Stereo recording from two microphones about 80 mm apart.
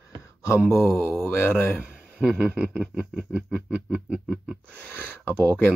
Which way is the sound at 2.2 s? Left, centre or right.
Centre.